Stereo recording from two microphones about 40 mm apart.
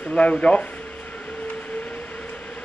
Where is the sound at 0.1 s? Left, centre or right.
Left.